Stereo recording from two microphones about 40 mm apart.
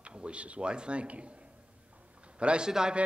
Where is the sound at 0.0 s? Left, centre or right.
Right.